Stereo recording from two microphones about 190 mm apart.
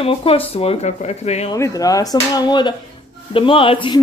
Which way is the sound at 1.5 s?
20° left (ahead or behind).